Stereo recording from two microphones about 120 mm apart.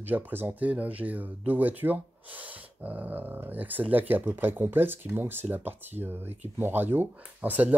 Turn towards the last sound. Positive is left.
turn(degrees=-15)  # may be behind; listen again after turning